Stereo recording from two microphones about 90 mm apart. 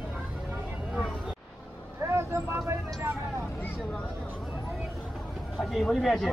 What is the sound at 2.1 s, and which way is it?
Speech, 30° right (ahead or behind).